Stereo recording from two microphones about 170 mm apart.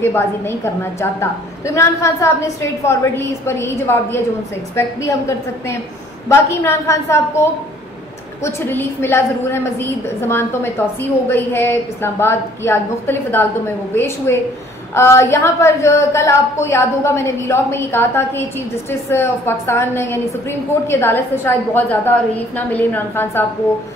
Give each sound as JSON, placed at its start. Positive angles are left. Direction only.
{"t": 0.0, "sound": "a woman's voice", "side_deg": 15}
{"t": 6.2, "sound": "a woman's voice", "side_deg": 15}
{"t": 8.5, "sound": "a woman's voice", "side_deg": 15}